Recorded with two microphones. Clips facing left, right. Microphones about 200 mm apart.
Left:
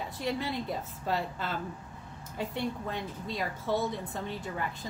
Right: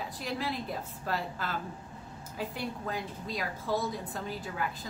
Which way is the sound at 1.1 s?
Centre (ahead or behind).